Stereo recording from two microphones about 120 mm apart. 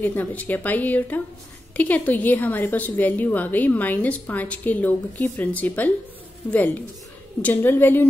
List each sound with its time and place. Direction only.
0.0 s a woman's voice: 15° left (ahead or behind)